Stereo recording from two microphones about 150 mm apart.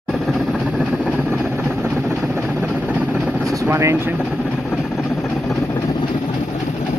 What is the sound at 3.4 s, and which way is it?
Vehicle, 20° right (ahead or behind).